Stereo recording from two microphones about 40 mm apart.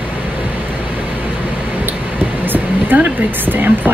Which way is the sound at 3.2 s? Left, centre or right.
Right.